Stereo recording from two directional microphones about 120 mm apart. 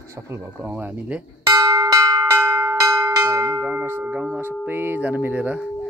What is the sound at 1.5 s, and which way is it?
Bell, 30° right (ahead or behind).